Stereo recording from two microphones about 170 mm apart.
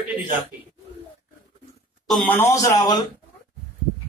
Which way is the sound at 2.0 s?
Centre (ahead or behind).